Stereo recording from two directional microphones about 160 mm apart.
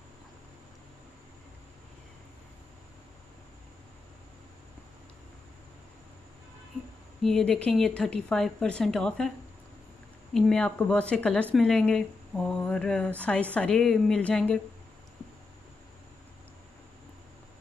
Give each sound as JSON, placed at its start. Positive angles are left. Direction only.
{"t": 7.2, "sound": "a woman's voice", "side_deg": 5}
{"t": 10.3, "sound": "a woman's voice", "side_deg": 0}